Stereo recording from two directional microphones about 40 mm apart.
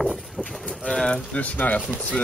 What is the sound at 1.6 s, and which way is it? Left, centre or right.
Speech, left.